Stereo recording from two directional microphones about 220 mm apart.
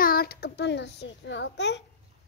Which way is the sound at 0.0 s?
45° left (ahead or behind).